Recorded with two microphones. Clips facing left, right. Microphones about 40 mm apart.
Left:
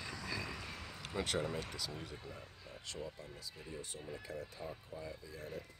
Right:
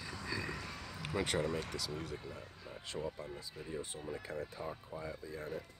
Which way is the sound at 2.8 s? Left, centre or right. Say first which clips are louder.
Right 5 dB; right.